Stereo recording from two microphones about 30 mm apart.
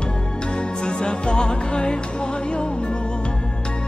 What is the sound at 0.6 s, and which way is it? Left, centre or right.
Music, left.